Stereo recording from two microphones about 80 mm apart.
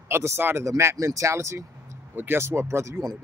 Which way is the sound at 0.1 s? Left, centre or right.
Right.